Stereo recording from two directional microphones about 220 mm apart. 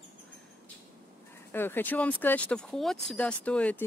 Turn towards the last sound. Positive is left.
turn(degrees=5)  # may be behind; listen again after turning